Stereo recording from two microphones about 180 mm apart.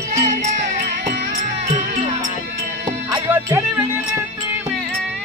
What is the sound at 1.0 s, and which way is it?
Music, 45° right (ahead or behind).